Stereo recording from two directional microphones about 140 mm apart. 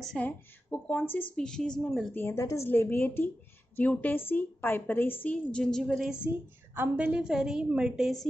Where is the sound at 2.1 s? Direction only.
20° left (ahead or behind).